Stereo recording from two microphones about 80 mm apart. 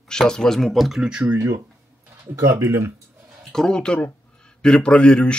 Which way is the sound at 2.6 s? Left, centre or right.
Right.